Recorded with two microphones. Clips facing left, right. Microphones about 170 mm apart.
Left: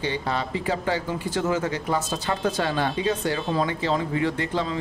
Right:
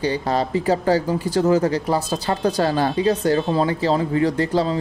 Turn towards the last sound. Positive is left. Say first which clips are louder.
# right 6 dB
turn(degrees=-35)  # may be behind; listen again after turning